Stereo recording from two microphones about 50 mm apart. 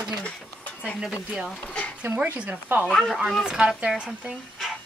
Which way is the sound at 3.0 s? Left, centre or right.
Centre.